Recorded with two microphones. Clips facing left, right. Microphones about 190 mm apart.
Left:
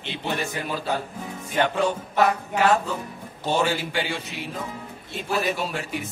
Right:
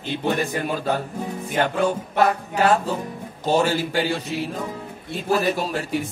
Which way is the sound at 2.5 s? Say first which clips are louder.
Right 2 dB; 35° right (ahead or behind).